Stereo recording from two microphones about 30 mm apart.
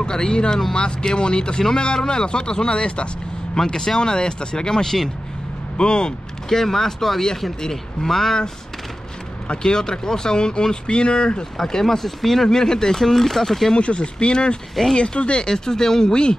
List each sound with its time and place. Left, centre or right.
0.0 s speech: left
4.8 s speech: centre
5.8 s speech: left
6.5 s speech: centre
9.6 s speech: left
11.5 s speech: centre
12.4 s speech: centre
13.7 s speech: left
15.4 s speech: left